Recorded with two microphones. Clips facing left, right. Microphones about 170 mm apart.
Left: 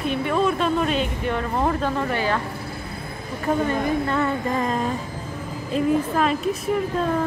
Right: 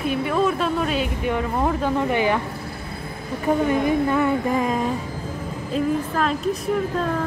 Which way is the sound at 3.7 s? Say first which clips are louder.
Right 3 dB; 10° right (ahead or behind).